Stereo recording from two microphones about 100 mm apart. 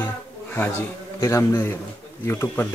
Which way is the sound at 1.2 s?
30° left (ahead or behind).